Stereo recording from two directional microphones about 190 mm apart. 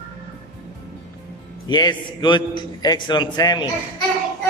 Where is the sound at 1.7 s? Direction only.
25° left (ahead or behind).